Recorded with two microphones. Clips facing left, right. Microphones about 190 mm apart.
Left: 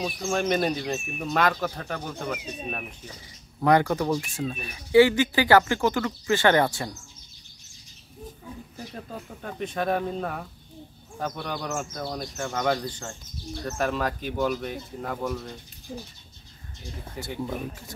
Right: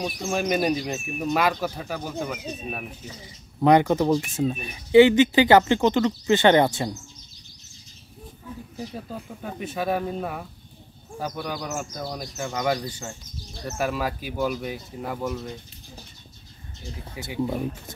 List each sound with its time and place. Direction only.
0.0 s speech: centre (ahead or behind)
3.6 s speech: 20° right (ahead or behind)
8.7 s speech: 5° right (ahead or behind)
17.2 s speech: 10° right (ahead or behind)
17.5 s speech: 20° right (ahead or behind)